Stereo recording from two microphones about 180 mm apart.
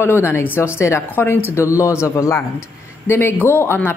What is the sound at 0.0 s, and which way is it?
Speech, 15° left (ahead or behind).